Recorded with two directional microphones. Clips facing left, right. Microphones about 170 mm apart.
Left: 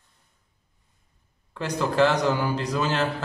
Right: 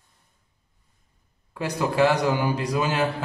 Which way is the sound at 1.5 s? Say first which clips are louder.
Even; 10° right (ahead or behind).